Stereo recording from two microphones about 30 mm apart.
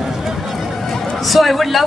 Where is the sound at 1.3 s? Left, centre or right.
Centre.